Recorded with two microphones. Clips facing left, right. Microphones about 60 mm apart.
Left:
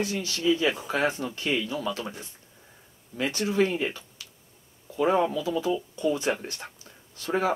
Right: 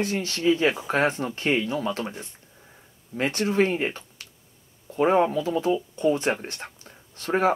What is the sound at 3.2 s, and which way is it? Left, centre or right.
Speech, right.